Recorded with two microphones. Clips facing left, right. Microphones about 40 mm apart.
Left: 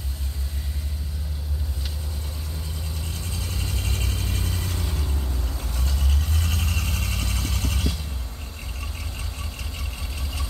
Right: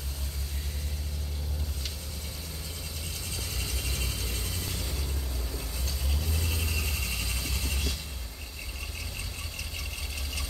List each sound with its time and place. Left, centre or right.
3.6 s vehicle: left